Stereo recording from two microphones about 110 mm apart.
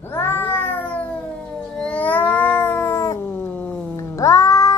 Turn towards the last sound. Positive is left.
turn(degrees=30)  # may be behind; listen again after turning